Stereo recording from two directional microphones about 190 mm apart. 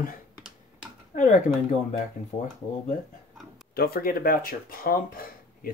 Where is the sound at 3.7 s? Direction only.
55° left (ahead or behind).